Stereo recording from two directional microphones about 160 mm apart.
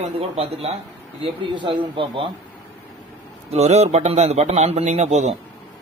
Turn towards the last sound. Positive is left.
turn(degrees=-45)  # may be behind; listen again after turning